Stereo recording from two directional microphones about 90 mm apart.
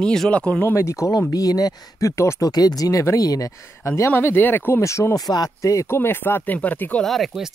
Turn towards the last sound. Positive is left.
turn(degrees=0)  # may be behind; listen again after turning